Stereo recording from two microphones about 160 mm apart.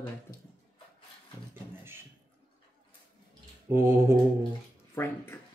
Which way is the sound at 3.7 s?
15° right (ahead or behind).